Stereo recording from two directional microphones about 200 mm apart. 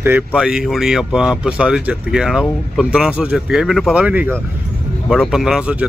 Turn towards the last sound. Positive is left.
turn(degrees=-5)  # may be behind; listen again after turning